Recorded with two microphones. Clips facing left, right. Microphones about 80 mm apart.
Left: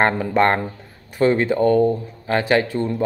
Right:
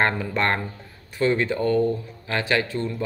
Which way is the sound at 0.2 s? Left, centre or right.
Left.